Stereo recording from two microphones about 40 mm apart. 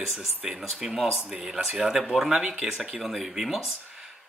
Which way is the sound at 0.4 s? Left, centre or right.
Centre.